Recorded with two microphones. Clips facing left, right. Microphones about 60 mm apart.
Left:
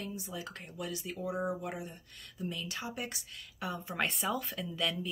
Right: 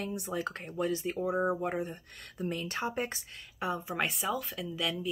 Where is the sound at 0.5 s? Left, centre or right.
Right.